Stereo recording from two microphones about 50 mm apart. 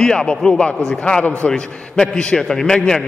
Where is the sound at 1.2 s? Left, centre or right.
Left.